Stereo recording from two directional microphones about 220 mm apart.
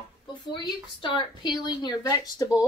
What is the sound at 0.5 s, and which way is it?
A woman's voice, 20° left (ahead or behind).